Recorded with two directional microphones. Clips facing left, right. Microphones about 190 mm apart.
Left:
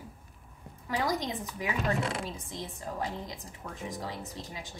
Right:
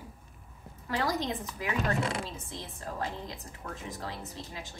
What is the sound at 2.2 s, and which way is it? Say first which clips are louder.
A woman's voice: left 2 dB; 15° left (ahead or behind).